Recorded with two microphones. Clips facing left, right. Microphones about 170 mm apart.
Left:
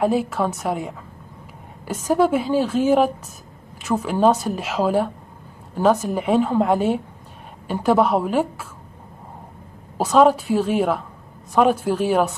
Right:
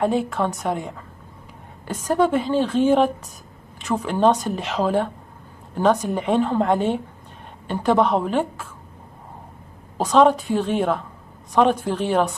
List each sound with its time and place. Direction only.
0.0 s a woman's voice: 5° left (ahead or behind)
9.9 s a woman's voice: 5° left (ahead or behind)